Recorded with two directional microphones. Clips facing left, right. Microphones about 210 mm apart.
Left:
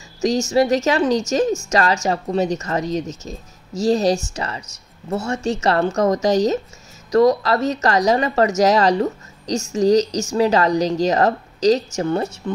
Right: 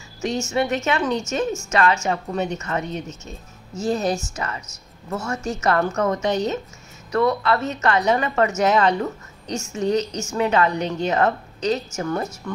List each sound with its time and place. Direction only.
0.2 s speech: 35° left (ahead or behind)